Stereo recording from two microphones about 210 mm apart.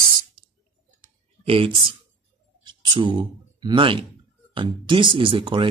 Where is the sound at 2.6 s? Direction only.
20° right (ahead or behind).